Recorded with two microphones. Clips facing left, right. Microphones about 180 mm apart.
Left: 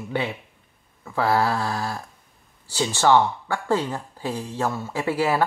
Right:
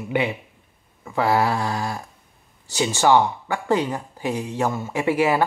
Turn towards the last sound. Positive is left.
turn(degrees=-20)  # may be behind; listen again after turning